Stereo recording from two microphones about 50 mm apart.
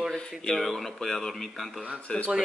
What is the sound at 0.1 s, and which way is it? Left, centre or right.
Speech, centre.